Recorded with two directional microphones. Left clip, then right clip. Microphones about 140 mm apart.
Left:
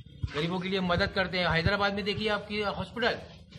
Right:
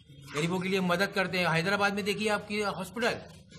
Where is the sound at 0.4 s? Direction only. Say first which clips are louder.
Right 1 dB; 30° right (ahead or behind).